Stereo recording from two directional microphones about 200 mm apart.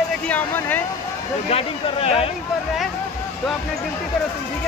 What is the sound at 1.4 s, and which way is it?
Speech, 30° left (ahead or behind).